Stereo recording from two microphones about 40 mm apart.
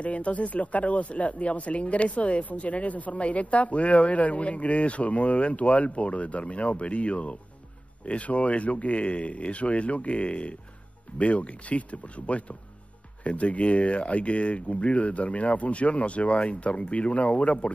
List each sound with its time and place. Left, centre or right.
0.0 s speech: left